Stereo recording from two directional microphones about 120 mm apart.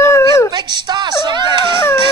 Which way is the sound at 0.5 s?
35° right (ahead or behind).